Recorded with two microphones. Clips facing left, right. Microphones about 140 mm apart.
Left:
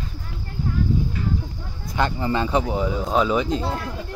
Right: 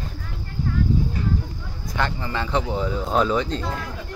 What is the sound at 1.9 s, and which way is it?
Speech, 20° left (ahead or behind).